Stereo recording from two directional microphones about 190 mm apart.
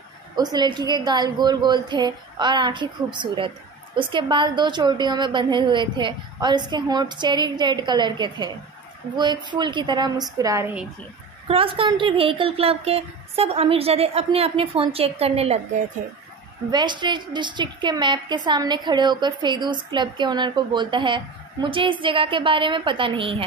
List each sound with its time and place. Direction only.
0.4 s a woman's voice: 20° right (ahead or behind)
11.4 s a woman's voice: 30° right (ahead or behind)
16.7 s a woman's voice: 25° right (ahead or behind)